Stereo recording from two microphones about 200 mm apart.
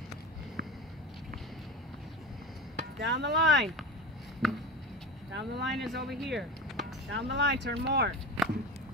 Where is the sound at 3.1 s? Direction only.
60° right (ahead or behind).